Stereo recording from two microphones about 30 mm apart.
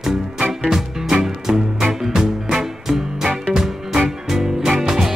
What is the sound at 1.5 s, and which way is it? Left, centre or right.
Music, right.